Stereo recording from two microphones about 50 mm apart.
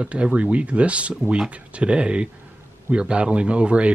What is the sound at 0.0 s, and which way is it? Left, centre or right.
A man's voice, right.